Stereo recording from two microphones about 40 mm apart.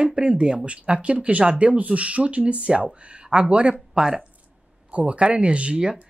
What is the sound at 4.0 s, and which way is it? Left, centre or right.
Speech, centre.